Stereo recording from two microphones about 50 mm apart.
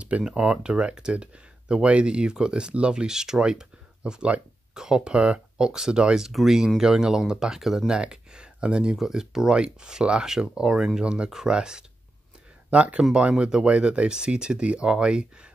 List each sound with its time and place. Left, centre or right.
0.2 s speech: centre
8.9 s speech: centre
11.2 s speech: centre
12.7 s speech: right